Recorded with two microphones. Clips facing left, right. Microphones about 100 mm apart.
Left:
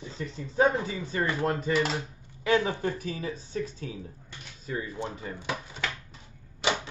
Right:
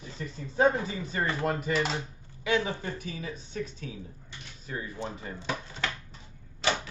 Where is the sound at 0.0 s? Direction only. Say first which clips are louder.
Left 2 dB; 25° left (ahead or behind).